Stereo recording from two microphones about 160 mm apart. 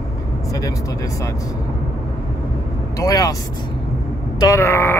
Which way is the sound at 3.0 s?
20° left (ahead or behind).